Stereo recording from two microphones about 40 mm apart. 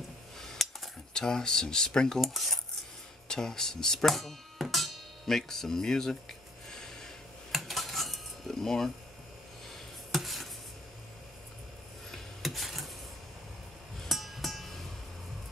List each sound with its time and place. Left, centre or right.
0.4 s a sound: centre
1.1 s speech: centre
2.1 s cutlery: centre
3.3 s speech: centre
7.5 s typewriter: centre
9.7 s a sound: centre
12.4 s cutlery: centre
14.0 s music: centre